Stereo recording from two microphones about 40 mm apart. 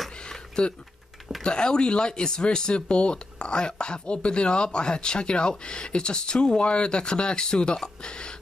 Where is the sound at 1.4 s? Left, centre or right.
Left.